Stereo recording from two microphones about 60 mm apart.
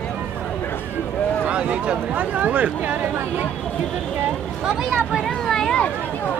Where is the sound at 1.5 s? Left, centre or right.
Centre.